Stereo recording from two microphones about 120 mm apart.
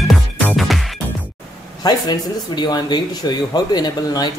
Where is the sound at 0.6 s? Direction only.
Centre (ahead or behind).